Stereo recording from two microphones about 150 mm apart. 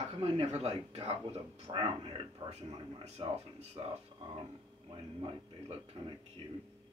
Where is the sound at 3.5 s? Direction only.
45° right (ahead or behind).